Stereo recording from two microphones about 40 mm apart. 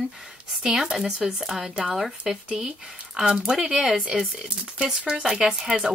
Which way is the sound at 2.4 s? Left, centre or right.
Right.